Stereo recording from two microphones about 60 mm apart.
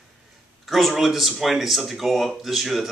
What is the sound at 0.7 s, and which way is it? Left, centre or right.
A man's voice, centre.